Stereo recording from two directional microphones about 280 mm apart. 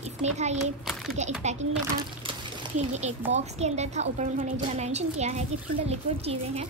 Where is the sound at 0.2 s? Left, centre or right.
Right.